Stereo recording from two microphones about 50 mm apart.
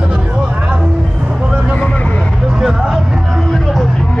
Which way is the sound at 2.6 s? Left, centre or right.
Centre.